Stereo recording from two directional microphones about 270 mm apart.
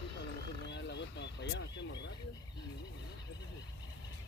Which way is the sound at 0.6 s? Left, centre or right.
Left.